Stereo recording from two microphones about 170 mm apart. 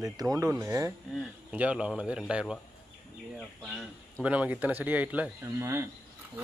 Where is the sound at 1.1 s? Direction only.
5° right (ahead or behind).